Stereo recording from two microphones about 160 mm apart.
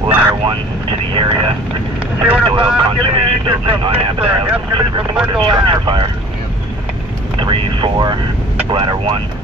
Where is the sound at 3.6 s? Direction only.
35° right (ahead or behind).